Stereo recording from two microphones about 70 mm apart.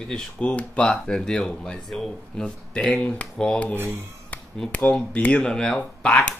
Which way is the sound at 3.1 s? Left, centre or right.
Centre.